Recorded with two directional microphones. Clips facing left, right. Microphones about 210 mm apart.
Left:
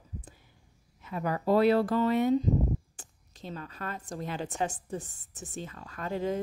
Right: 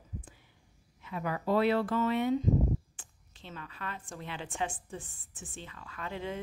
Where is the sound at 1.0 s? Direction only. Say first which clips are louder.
Left 4 dB; 40° left (ahead or behind).